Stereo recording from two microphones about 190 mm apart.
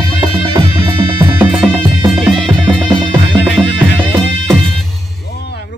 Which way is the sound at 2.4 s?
5° left (ahead or behind).